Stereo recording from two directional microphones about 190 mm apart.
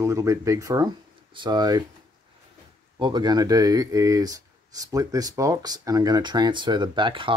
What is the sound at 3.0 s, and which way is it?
Speech, 20° right (ahead or behind).